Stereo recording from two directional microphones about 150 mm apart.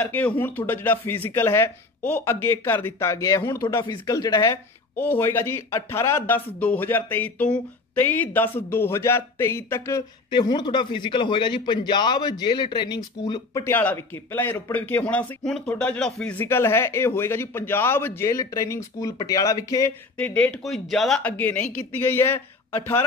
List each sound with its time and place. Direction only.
0.0 s speech: 10° left (ahead or behind)
3.6 s speech: 30° left (ahead or behind)
10.3 s speech: 30° left (ahead or behind)
20.2 s speech: 10° left (ahead or behind)